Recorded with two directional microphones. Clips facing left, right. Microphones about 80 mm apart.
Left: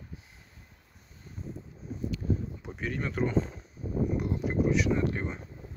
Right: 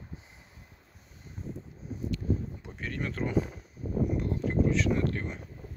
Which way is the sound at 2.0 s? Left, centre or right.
Centre.